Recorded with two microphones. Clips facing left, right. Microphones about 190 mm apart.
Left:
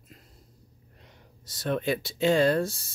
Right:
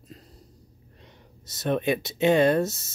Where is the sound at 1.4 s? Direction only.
20° right (ahead or behind).